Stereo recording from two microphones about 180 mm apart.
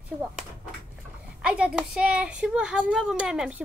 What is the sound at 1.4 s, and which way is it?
Speech, 5° right (ahead or behind).